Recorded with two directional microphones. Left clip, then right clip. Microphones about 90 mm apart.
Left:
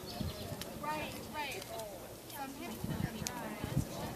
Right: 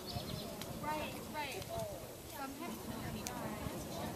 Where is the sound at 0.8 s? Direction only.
35° left (ahead or behind).